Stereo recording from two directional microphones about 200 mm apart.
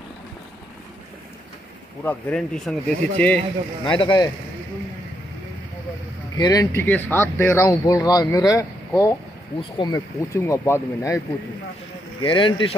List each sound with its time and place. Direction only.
2.0 s speech: 5° left (ahead or behind)
3.8 s speech: 25° left (ahead or behind)
6.3 s speech: 20° left (ahead or behind)
12.2 s speech: 25° left (ahead or behind)